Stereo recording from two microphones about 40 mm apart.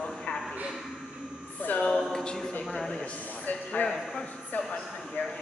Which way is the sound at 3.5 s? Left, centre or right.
Left.